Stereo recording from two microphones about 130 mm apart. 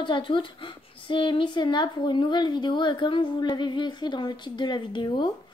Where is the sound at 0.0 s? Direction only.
40° left (ahead or behind).